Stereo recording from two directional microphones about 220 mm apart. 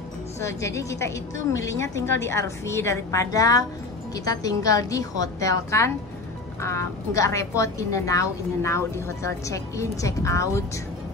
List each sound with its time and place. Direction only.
0.4 s speech: 15° left (ahead or behind)